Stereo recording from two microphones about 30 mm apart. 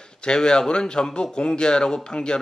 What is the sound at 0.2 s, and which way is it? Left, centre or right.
Speech, left.